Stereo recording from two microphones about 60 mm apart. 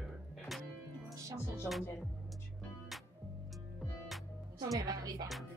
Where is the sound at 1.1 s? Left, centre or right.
Right.